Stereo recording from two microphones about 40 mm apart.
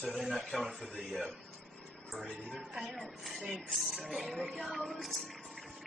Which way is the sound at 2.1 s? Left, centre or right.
Centre.